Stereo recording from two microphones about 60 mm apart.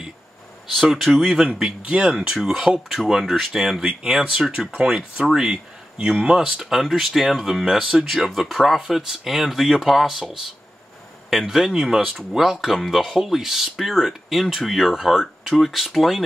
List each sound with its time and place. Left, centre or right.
0.7 s speech: centre
1.3 s speech: centre
2.1 s speech: centre